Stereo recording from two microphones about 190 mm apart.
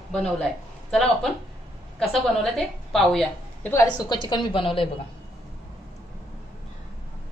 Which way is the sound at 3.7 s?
20° left (ahead or behind).